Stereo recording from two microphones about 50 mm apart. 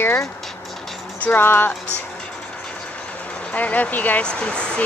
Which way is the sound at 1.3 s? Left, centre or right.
Left.